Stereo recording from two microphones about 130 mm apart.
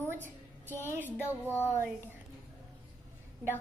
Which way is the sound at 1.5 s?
15° left (ahead or behind).